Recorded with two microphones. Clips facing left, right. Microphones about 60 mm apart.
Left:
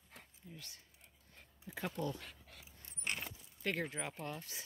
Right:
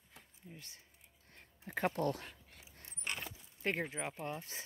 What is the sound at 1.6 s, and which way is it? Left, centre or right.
Speech, right.